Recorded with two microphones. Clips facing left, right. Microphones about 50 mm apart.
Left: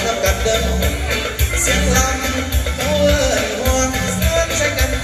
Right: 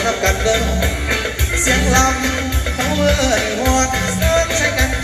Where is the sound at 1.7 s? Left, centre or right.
Right.